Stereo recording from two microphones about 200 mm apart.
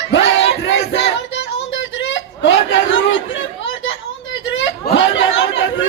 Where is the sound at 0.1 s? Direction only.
65° left (ahead or behind).